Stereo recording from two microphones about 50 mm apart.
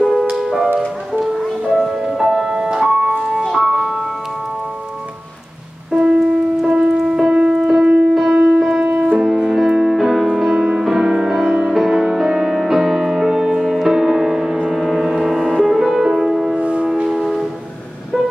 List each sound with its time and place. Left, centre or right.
0.0 s music: centre
1.8 s music: centre
3.4 s music: centre
5.9 s music: centre
9.3 s music: centre
16.5 s music: right
16.8 s music: centre
17.2 s music: centre